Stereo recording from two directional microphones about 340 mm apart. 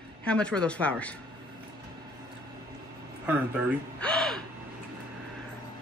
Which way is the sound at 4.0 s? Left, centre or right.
Centre.